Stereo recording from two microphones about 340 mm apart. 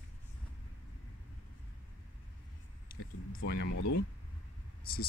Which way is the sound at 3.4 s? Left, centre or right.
Left.